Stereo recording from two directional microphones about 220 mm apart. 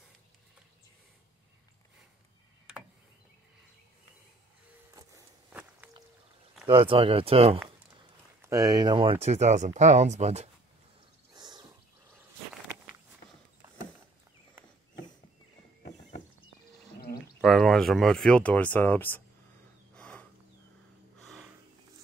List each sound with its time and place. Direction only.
4.9 s walk: 10° right (ahead or behind)
6.7 s speech: 25° right (ahead or behind)
8.4 s speech: 15° right (ahead or behind); by 10.5 s 30° right (ahead or behind)
11.3 s wild animals: 20° right (ahead or behind)
17.0 s a sound: 45° left (ahead or behind)
17.4 s speech: centre (ahead or behind)
20.0 s a sound: 5° left (ahead or behind)
21.2 s sniff: centre (ahead or behind)